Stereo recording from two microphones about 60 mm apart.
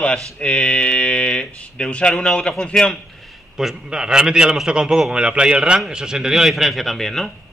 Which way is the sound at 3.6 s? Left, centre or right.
Centre.